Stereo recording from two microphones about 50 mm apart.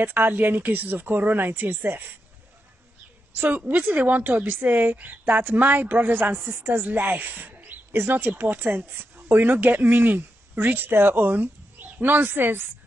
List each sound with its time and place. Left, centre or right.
0.0 s speech: right
3.3 s speech: right